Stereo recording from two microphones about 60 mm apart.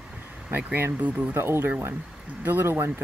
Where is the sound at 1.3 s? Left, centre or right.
Right.